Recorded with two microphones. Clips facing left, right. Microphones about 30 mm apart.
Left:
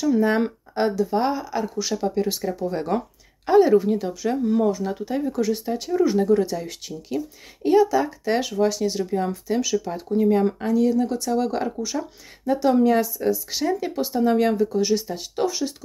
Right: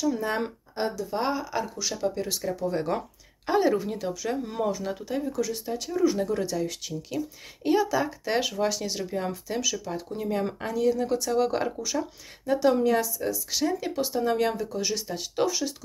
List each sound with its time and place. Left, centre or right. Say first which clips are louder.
0.2 s speech: left 8 dB; centre
1.1 s speech: left 5 dB; centre
1.8 s speech: left 5 dB; centre
4.4 s speech: left 9 dB; centre
4.6 s speech: left 5 dB; centre
5.0 s speech: left 5 dB; centre
5.3 s speech: left 6 dB; left
5.7 s speech: left 2 dB; centre
9.6 s speech: left 5 dB; centre
10.1 s speech: left 11 dB; centre
12.5 s speech: left 4 dB; centre